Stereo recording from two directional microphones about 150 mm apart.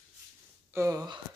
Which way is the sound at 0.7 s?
20° right (ahead or behind).